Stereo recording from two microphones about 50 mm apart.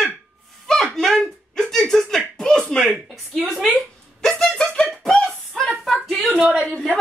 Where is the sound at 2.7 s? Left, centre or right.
Centre.